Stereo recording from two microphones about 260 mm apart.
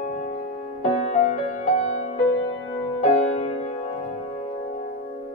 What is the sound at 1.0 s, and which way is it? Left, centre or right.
Music, left.